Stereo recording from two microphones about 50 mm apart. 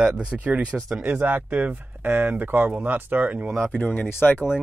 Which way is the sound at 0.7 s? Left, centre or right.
Centre.